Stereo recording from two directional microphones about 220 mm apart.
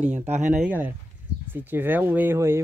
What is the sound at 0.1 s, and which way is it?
Speech, 30° right (ahead or behind).